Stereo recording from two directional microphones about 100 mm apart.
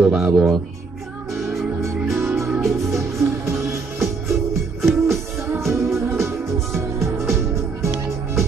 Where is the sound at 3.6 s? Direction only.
Centre (ahead or behind).